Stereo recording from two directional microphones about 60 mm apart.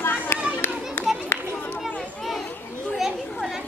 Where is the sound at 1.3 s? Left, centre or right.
Left.